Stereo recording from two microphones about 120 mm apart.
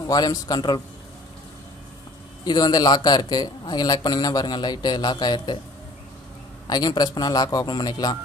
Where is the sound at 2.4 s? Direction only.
35° left (ahead or behind).